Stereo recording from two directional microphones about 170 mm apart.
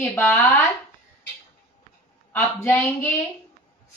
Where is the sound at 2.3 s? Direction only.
15° left (ahead or behind).